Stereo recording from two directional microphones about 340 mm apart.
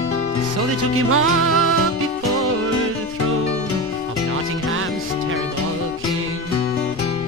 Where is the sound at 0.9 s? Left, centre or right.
Right.